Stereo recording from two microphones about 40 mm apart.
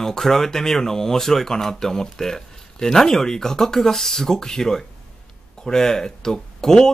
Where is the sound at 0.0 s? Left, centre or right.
Centre.